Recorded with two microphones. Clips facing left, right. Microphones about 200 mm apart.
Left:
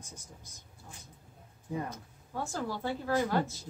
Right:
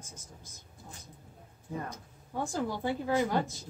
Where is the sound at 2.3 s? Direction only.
15° right (ahead or behind).